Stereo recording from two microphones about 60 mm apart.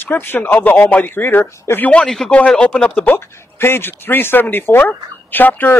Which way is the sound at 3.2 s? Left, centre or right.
Left.